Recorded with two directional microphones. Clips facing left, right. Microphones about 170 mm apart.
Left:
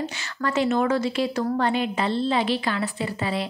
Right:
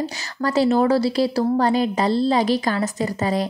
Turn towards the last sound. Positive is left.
turn(degrees=-40)  # may be behind; listen again after turning